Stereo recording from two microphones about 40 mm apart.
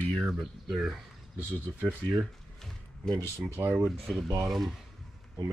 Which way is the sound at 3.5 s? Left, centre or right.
Right.